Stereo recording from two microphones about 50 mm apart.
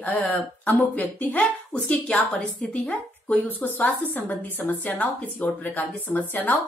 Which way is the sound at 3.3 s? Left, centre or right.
Left.